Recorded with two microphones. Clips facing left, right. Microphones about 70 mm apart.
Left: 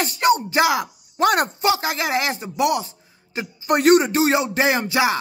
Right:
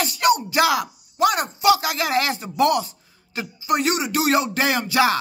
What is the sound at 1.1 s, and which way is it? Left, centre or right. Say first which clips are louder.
Speech: left 2 dB; left.